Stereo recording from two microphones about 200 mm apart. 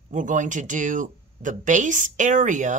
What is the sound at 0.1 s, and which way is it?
A woman's voice, 40° right (ahead or behind).